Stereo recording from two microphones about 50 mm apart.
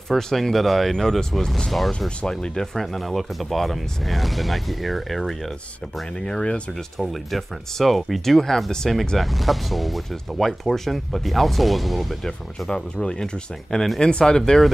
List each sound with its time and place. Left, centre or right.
0.1 s speech: centre
1.9 s speech: centre
6.2 s speech: centre
7.0 s speech: centre
12.6 s speech: centre